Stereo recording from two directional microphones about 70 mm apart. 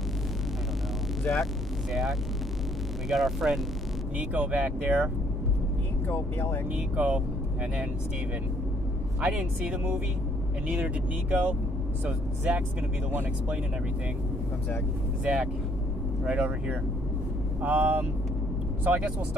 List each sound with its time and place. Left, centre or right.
1.2 s speech: centre
3.1 s speech: centre
4.2 s speech: right
6.0 s speech: left
6.7 s speech: right
9.2 s speech: centre
16.3 s speech: centre